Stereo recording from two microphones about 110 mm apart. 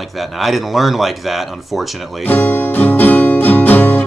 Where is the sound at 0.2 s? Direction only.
Centre (ahead or behind).